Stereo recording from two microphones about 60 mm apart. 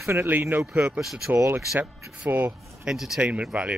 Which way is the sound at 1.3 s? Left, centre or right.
Right.